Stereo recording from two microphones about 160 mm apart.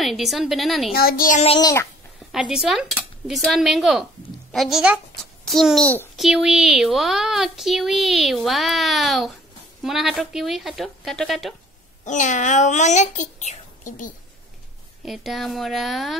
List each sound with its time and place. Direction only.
0.0 s speech: centre (ahead or behind)
0.9 s a child's voice: 65° left (ahead or behind)
1.6 s a child's voice: 20° left (ahead or behind)
2.3 s a child's voice: 5° right (ahead or behind)
12.0 s a child's voice: 50° left (ahead or behind)
15.0 s speech: centre (ahead or behind)